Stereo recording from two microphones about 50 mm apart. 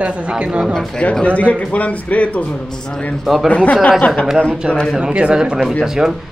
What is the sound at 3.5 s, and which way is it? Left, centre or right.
Speech, left.